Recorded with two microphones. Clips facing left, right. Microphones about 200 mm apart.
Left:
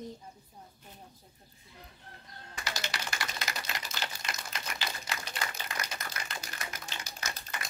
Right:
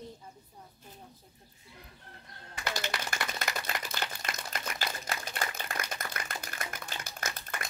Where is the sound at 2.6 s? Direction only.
50° right (ahead or behind).